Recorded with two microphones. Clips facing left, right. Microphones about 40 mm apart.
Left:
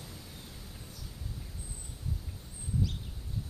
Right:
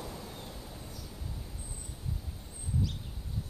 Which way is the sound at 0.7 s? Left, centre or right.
Centre.